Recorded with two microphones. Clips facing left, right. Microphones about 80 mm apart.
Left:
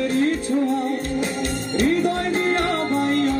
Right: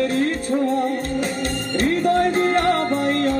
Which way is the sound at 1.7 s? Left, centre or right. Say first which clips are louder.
Right 2 dB; right.